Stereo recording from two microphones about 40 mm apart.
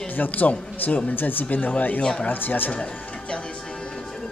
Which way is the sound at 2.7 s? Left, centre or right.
Left.